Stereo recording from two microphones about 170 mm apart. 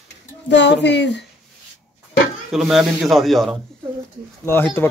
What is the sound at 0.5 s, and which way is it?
Speech, 90° left.